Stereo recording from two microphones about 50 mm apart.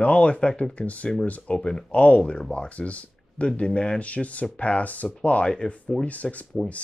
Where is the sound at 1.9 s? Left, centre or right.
Left.